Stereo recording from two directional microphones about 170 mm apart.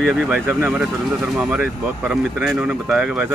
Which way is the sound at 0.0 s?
5° right (ahead or behind).